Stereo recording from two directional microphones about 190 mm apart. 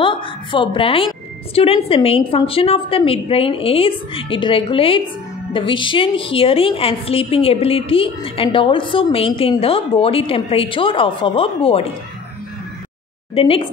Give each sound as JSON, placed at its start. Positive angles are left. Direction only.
{"t": 0.0, "sound": "a sound", "side_deg": 25}
{"t": 1.5, "sound": "a woman's voice", "side_deg": 30}
{"t": 13.3, "sound": "a woman's voice", "side_deg": 30}